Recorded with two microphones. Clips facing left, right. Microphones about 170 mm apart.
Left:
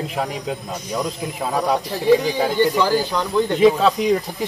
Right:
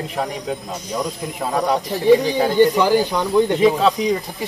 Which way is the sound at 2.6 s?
15° right (ahead or behind).